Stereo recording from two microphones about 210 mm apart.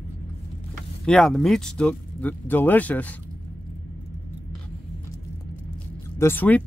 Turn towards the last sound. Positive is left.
turn(degrees=10)  # may be behind; listen again after turning